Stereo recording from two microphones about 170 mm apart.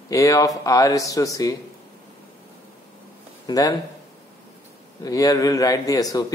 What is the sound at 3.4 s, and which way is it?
Speech, 20° left (ahead or behind).